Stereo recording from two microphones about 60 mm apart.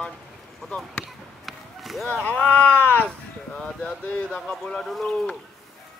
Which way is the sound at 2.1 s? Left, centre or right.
Left.